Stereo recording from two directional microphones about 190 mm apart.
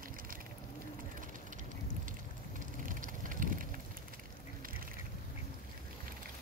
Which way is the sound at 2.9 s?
45° right (ahead or behind).